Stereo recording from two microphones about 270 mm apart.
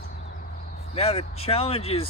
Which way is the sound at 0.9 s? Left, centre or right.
Left.